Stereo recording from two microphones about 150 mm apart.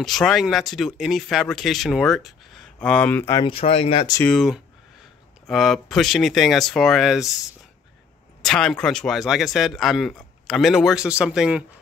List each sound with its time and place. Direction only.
0.0 s speech: centre (ahead or behind)
3.3 s speech: 35° left (ahead or behind)
4.2 s speech: 5° left (ahead or behind)
8.4 s speech: 5° left (ahead or behind)